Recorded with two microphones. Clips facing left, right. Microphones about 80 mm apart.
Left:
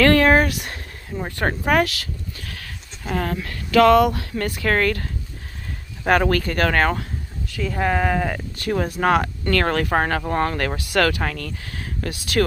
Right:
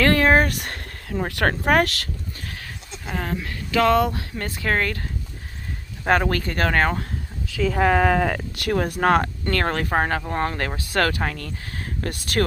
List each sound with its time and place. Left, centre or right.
0.0 s a sound: right
0.7 s a sound: right
1.7 s speech: right
2.4 s goat: right
3.1 s speech: centre
6.0 s speech: right
7.6 s speech: right
8.7 s speech: right